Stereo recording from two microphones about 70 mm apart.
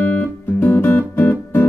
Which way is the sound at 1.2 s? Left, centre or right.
Left.